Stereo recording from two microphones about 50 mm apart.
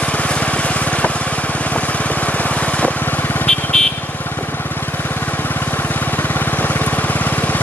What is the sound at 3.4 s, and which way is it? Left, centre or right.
Vehicle, centre.